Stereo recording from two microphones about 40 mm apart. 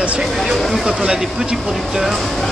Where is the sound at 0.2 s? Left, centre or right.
Centre.